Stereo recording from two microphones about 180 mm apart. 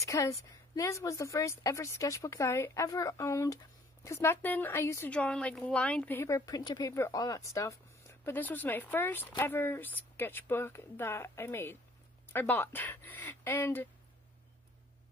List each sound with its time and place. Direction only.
0.0 s a woman's voice: 20° left (ahead or behind)